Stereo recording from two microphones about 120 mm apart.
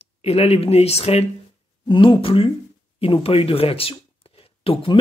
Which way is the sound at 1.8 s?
40° left (ahead or behind).